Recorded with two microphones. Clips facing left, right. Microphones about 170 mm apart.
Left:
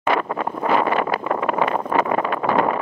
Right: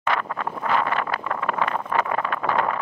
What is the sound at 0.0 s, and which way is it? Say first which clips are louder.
Vehicle: left 5 dB; 10° left (ahead or behind).